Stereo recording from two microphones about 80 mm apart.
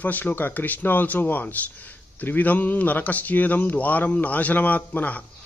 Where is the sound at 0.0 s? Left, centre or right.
Left.